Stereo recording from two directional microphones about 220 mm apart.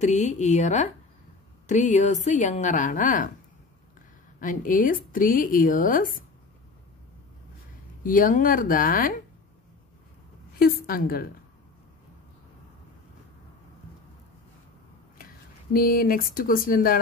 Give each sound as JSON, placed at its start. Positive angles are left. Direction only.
{"t": 0.0, "sound": "speech", "side_deg": 30}
{"t": 4.4, "sound": "speech", "side_deg": 35}
{"t": 8.0, "sound": "speech", "side_deg": 40}
{"t": 10.6, "sound": "a woman's voice", "side_deg": 40}
{"t": 15.7, "sound": "speech", "side_deg": 40}